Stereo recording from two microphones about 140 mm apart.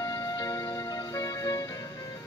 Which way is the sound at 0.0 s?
25° left (ahead or behind).